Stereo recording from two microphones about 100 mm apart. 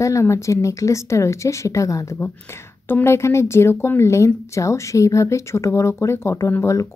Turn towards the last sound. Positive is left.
turn(degrees=30)  # may be behind; listen again after turning